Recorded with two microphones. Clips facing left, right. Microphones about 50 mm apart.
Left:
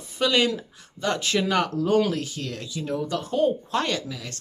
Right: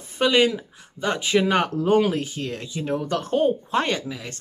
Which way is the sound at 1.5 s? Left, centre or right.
Right.